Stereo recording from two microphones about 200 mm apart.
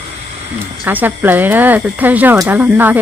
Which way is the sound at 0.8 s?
10° right (ahead or behind).